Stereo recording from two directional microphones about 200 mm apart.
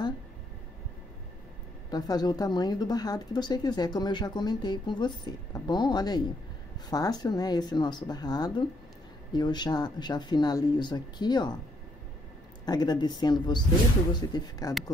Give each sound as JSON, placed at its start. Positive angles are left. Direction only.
{"t": 1.9, "sound": "speech", "side_deg": 20}
{"t": 12.6, "sound": "speech", "side_deg": 20}